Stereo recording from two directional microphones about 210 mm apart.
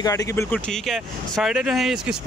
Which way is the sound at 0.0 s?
15° left (ahead or behind).